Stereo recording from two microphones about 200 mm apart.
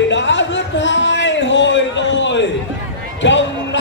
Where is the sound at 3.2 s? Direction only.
65° left (ahead or behind).